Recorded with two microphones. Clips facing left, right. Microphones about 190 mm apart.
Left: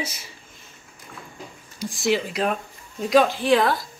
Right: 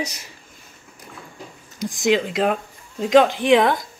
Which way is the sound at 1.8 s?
15° right (ahead or behind).